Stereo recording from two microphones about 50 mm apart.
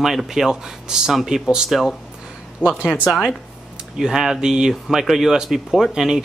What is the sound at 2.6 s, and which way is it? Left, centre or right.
Speech, left.